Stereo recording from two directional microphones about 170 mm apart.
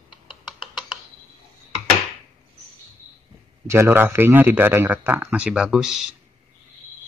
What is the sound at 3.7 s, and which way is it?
Speech, 15° right (ahead or behind).